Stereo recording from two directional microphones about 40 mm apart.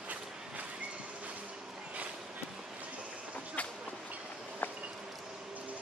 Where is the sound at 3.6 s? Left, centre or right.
Left.